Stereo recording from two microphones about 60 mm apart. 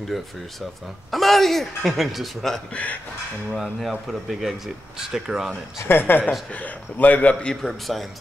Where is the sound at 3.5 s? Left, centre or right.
Centre.